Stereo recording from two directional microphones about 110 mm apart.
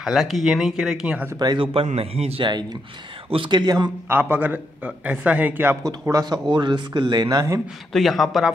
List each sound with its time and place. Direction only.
0.0 s speech: centre (ahead or behind)
1.4 s a man's voice: 40° right (ahead or behind)
1.7 s speech: 60° right (ahead or behind)
3.3 s speech: 50° right (ahead or behind)
4.1 s a man's voice: 20° right (ahead or behind)
6.0 s a man's voice: 35° right (ahead or behind)
7.9 s speech: centre (ahead or behind)